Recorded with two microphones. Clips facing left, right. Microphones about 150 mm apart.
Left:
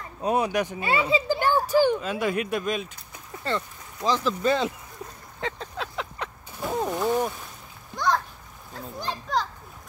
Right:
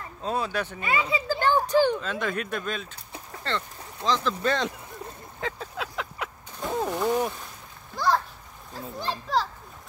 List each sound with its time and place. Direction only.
0.2 s speech: 15° left (ahead or behind)
0.8 s speech: 30° left (ahead or behind)
1.2 s speech: 15° left (ahead or behind)
5.4 s vehicle: 5° right (ahead or behind)
7.9 s a sound: 5° right (ahead or behind)
8.7 s a child's voice: centre (ahead or behind)